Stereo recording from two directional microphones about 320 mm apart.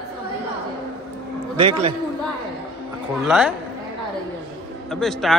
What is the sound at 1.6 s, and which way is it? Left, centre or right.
Speech, centre.